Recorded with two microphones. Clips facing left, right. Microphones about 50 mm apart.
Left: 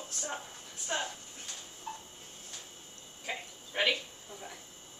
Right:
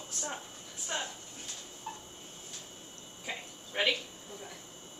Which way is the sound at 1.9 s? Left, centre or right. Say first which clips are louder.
Left 1 dB; centre.